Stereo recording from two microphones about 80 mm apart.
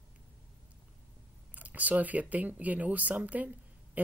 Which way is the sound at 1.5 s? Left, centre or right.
Centre.